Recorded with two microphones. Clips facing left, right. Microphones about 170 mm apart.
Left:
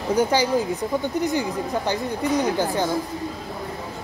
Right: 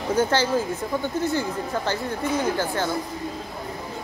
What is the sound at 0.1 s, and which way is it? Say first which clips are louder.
Speech: left 2 dB; 15° left (ahead or behind).